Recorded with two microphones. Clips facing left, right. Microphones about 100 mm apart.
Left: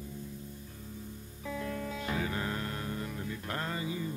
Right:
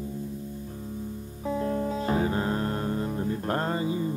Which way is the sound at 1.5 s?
35° right (ahead or behind).